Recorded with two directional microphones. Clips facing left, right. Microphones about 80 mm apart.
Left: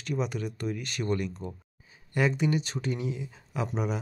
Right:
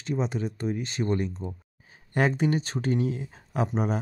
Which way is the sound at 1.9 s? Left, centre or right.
Right.